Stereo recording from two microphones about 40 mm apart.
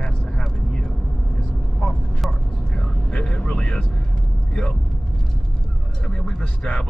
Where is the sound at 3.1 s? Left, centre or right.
Left.